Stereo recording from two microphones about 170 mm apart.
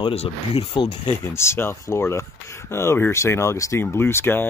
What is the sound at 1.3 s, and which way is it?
Speech, 15° left (ahead or behind).